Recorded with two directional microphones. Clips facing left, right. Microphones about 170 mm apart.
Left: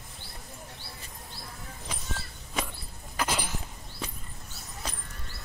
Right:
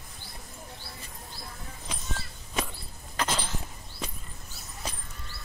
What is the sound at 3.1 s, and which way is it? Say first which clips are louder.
Cough: even; 10° left (ahead or behind).